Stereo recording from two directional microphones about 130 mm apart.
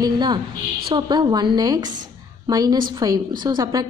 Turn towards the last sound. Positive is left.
turn(degrees=-30)  # may be behind; listen again after turning